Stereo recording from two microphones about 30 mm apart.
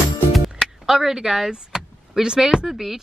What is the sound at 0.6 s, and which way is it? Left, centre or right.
Vehicle, centre.